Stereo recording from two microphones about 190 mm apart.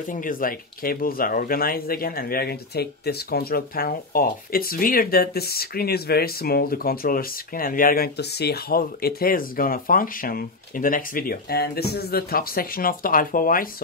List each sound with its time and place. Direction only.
0.0 s speech: 45° left (ahead or behind)